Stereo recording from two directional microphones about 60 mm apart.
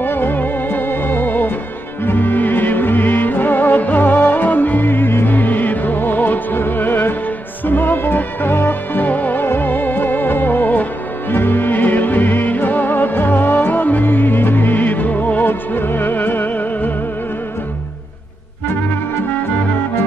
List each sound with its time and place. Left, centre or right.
0.0 s music: left